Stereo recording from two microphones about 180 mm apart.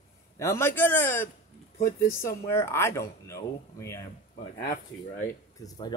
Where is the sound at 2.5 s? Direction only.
15° left (ahead or behind).